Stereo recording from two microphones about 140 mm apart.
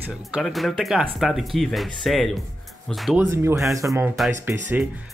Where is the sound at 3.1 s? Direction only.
15° right (ahead or behind).